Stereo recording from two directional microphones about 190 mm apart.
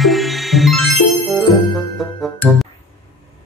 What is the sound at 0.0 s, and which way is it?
Music, centre (ahead or behind).